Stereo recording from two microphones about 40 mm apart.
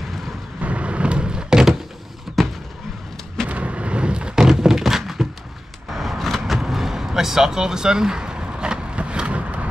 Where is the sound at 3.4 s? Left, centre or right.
Right.